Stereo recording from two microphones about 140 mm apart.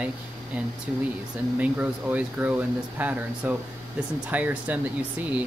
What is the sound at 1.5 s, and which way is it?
Speech, 10° right (ahead or behind).